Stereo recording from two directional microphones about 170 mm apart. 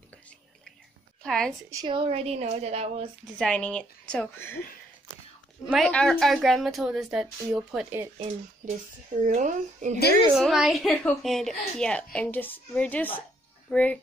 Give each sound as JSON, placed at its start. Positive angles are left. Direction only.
{"t": 1.2, "sound": "a woman's voice", "side_deg": 5}
{"t": 1.7, "sound": "a woman's voice", "side_deg": -25}
{"t": 3.3, "sound": "a woman's voice", "side_deg": 5}
{"t": 5.7, "sound": "a woman's voice", "side_deg": 5}
{"t": 8.2, "sound": "speech", "side_deg": -45}
{"t": 10.3, "sound": "a woman's voice", "side_deg": 0}